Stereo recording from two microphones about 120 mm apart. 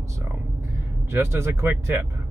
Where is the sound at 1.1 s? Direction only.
20° right (ahead or behind).